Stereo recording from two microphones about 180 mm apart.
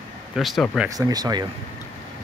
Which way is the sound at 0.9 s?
20° right (ahead or behind).